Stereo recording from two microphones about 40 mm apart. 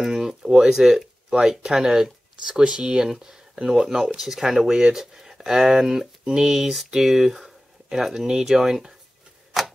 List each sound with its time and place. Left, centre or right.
0.0 s speech: centre